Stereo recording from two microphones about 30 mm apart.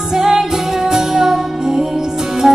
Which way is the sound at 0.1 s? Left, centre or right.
Centre.